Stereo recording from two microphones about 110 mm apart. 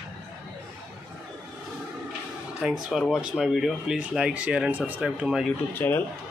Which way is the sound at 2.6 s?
5° right (ahead or behind).